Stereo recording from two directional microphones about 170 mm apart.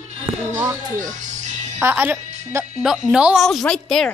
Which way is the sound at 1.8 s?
10° right (ahead or behind).